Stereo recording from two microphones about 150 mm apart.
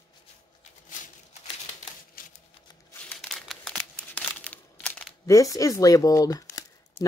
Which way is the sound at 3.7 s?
5° left (ahead or behind).